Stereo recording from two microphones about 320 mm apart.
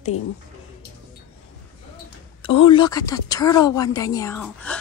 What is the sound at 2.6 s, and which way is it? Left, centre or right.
Speech, centre.